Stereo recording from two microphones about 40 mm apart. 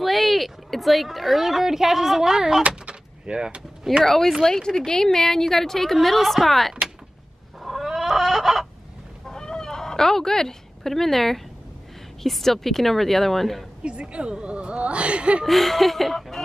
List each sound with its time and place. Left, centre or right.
0.0 s speech: centre
2.7 s door: right
4.0 s a woman's voice: centre
7.6 s chicken: centre
9.3 s fowl: centre
12.2 s speech: centre
13.8 s speech: right
15.4 s speech: centre